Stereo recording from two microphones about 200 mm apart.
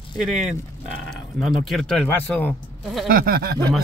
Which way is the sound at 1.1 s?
Centre (ahead or behind).